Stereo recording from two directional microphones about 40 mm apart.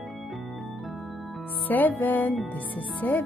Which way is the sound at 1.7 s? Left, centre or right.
Left.